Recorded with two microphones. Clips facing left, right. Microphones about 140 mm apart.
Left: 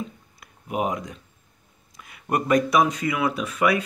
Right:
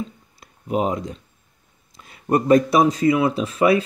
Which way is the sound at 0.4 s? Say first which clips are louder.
Right 4 dB; 30° right (ahead or behind).